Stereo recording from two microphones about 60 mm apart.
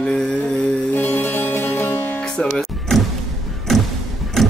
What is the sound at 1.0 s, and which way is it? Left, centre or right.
Music, left.